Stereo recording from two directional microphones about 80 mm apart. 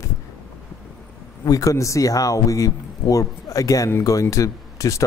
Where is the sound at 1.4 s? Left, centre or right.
Left.